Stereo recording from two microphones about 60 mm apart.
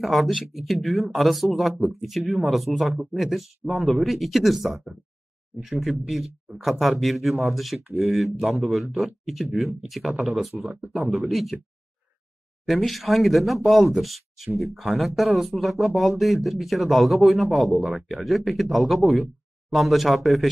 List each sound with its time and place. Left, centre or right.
0.0 s speech: centre
10.7 s speech: centre
11.2 s speech: centre
12.6 s speech: centre